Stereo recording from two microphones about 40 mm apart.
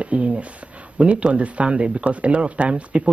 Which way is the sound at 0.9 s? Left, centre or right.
Right.